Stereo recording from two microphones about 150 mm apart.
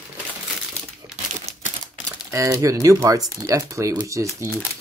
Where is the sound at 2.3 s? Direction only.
20° right (ahead or behind).